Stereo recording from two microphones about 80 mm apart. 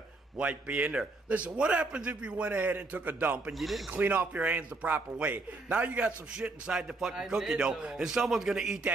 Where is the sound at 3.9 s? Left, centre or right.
Right.